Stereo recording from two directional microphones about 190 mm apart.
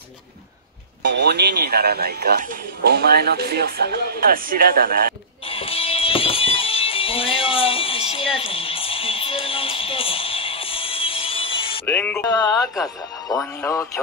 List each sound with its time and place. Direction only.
1.0 s speech: 65° right (ahead or behind)
5.5 s music: 30° left (ahead or behind)
11.8 s music: 10° left (ahead or behind)
12.3 s speech: 20° left (ahead or behind)
13.3 s speech: centre (ahead or behind)